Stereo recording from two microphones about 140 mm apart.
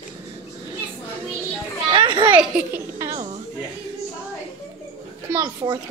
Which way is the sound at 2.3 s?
10° right (ahead or behind).